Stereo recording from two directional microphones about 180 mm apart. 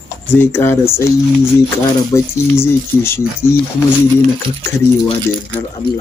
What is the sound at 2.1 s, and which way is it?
Speech, 15° left (ahead or behind).